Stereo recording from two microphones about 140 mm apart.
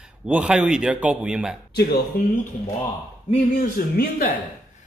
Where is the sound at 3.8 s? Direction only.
90° left.